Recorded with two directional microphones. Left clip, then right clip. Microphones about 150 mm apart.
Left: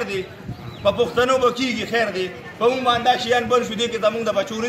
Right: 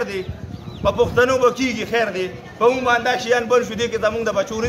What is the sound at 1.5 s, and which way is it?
Speech, 50° right (ahead or behind).